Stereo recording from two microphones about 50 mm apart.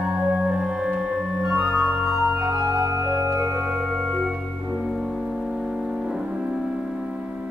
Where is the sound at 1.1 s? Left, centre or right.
Centre.